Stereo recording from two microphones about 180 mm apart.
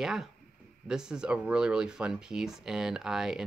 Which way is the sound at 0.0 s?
Centre (ahead or behind).